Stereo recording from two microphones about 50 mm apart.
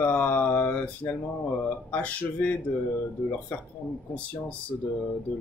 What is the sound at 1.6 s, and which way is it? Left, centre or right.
Speech, left.